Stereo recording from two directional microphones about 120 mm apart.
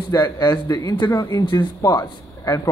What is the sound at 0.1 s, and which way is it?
A man's voice, 35° left (ahead or behind).